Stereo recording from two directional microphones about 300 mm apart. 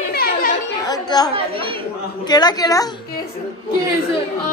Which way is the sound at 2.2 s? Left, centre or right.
Centre.